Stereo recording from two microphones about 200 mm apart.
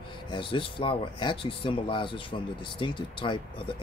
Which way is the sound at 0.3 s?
25° left (ahead or behind).